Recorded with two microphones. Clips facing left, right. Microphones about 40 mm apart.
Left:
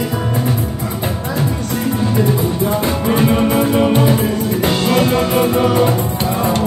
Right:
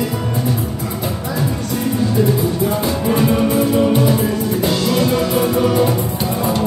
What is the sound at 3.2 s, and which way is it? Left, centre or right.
Music, left.